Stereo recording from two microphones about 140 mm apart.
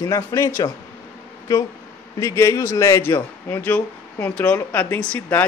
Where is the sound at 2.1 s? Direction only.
20° left (ahead or behind).